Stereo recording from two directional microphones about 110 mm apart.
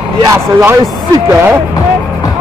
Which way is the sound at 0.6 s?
25° right (ahead or behind).